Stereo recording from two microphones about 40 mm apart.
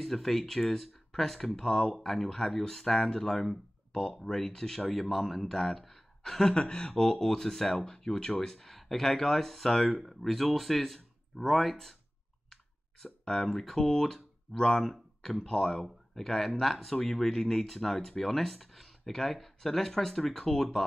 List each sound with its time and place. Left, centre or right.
0.0 s speech: centre
6.5 s speech: left
7.0 s speech: centre
13.0 s speech: centre
15.4 s speech: centre